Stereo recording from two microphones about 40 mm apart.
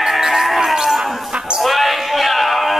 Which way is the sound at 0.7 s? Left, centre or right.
Centre.